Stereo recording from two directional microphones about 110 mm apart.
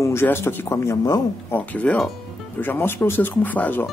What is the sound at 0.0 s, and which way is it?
Speech, 20° left (ahead or behind).